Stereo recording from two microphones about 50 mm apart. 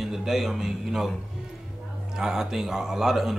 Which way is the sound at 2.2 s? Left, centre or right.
Centre.